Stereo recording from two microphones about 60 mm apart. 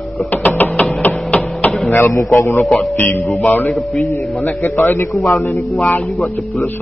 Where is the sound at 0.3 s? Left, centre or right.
Left.